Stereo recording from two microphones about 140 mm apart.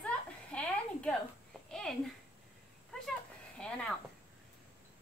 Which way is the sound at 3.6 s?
5° left (ahead or behind).